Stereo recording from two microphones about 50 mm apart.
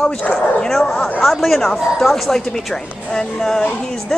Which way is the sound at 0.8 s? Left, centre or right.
Centre.